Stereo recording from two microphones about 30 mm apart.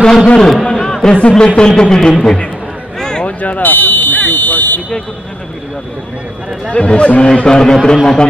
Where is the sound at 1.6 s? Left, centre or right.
Left.